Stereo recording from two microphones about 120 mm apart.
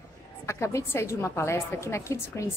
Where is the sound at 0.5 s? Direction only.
25° left (ahead or behind).